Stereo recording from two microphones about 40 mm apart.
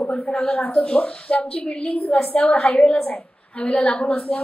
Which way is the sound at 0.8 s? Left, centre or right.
Left.